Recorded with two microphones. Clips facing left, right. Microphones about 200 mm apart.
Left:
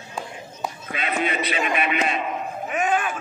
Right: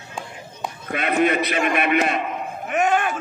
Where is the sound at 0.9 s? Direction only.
55° right (ahead or behind).